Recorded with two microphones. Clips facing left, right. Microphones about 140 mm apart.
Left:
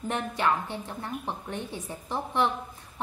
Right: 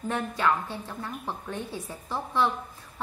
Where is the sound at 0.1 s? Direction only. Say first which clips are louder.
Right 1 dB; 20° left (ahead or behind).